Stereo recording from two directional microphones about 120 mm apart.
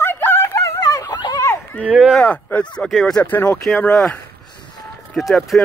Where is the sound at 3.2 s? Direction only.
15° left (ahead or behind).